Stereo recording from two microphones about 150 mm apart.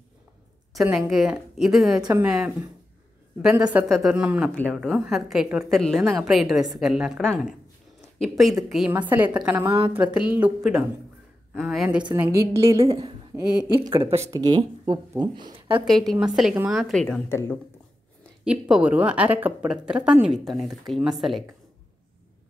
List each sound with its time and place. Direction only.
0.7 s a woman's voice: 5° right (ahead or behind)
8.6 s speech: 5° right (ahead or behind)
9.7 s a woman's voice: 25° right (ahead or behind)
9.9 s a woman's voice: 10° right (ahead or behind)
12.2 s a woman's voice: 20° right (ahead or behind); by 14.2 s 35° right (ahead or behind)
14.2 s a woman's voice: 25° right (ahead or behind)
15.8 s a woman's voice: centre (ahead or behind)
17.3 s speech: 15° left (ahead or behind)
18.4 s a woman's voice: 5° right (ahead or behind)